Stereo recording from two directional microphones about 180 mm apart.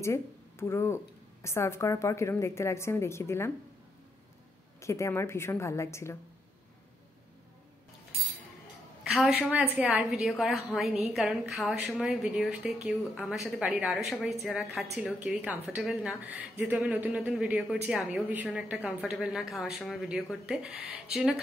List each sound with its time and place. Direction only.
0.0 s a woman's voice: 15° left (ahead or behind)
4.7 s a woman's voice: 15° left (ahead or behind)
9.1 s a woman's voice: centre (ahead or behind)